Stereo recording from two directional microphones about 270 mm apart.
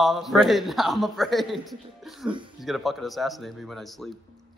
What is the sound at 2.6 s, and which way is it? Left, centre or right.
A man's voice, centre.